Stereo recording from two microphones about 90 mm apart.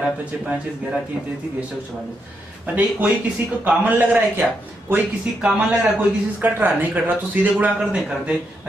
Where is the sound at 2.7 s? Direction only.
20° right (ahead or behind).